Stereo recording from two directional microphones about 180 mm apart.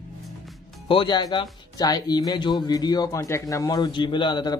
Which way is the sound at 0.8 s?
25° left (ahead or behind).